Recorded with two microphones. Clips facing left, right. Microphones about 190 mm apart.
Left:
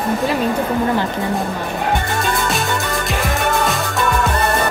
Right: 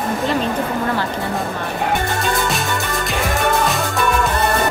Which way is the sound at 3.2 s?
Centre (ahead or behind).